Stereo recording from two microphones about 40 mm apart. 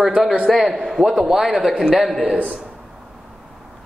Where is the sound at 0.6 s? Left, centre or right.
Centre.